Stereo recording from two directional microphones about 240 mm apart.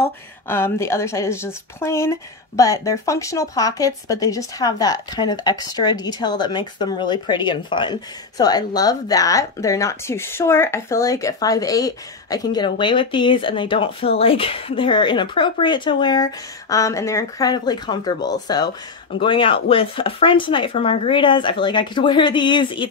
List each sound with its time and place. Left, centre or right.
0.0 s a woman's voice: centre